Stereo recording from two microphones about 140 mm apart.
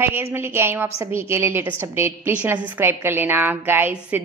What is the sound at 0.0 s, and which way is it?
Speech, 15° right (ahead or behind).